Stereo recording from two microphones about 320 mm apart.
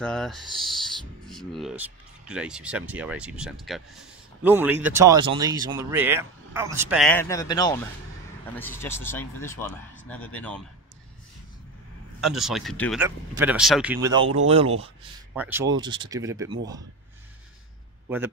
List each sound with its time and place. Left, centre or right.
0.0 s speech: centre
12.2 s speech: centre
14.2 s speech: right
15.3 s speech: centre
18.0 s speech: centre